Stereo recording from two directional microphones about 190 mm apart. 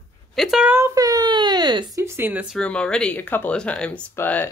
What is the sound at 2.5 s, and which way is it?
Speech, 5° left (ahead or behind).